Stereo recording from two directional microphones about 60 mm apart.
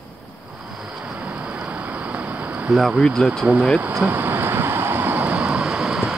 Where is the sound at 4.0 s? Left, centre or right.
Right.